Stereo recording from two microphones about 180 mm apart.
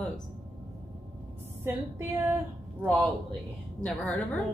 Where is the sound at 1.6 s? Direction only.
10° right (ahead or behind).